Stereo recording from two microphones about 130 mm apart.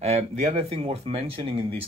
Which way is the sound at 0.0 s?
55° right (ahead or behind).